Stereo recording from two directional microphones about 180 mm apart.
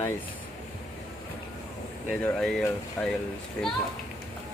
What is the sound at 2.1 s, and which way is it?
Speech, 5° left (ahead or behind).